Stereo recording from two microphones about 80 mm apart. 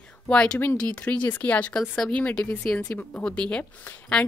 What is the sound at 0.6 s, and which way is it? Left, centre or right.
A woman's voice, left.